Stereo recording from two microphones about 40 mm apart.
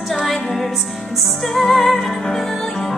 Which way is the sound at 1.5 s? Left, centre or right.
Centre.